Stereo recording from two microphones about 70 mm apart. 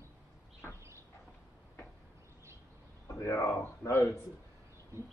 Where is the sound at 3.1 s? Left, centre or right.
Left.